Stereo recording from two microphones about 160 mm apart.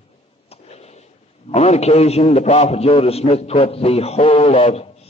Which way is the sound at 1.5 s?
40° left (ahead or behind).